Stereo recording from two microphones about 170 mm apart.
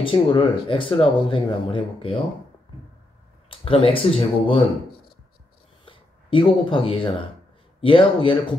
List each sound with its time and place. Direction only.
0.0 s speech: 30° left (ahead or behind)
3.4 s speech: 30° left (ahead or behind)
5.9 s speech: 30° left (ahead or behind)